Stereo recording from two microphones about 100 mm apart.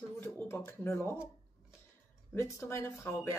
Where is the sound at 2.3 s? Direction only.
30° left (ahead or behind).